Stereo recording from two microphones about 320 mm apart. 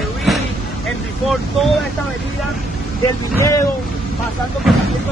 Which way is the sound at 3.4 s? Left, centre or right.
Centre.